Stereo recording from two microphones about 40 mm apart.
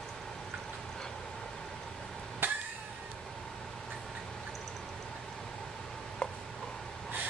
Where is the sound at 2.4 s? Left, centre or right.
Right.